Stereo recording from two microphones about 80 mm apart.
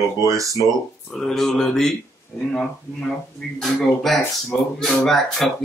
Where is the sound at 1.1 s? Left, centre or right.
Centre.